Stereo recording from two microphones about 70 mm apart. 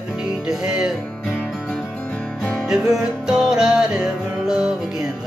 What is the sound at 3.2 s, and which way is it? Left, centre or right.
Music, centre.